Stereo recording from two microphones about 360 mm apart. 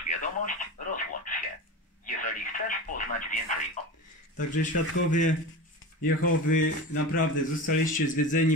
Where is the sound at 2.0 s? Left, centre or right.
Left.